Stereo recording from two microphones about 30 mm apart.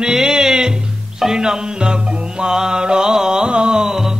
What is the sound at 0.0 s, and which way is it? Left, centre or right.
Music, right.